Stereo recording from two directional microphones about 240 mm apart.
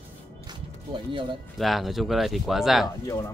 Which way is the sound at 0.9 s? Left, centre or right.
Centre.